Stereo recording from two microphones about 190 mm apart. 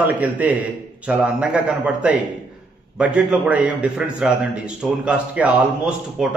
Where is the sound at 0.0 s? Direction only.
10° right (ahead or behind).